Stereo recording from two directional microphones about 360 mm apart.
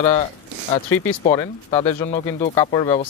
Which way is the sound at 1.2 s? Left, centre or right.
Centre.